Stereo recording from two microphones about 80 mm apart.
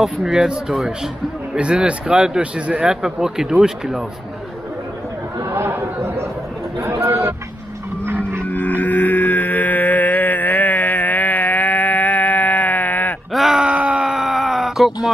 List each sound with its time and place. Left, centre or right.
0.0 s speech: centre
5.4 s chatter: right
6.8 s speech: right
8.5 s music: left
13.3 s groan: centre
13.7 s groan: centre
14.1 s groan: centre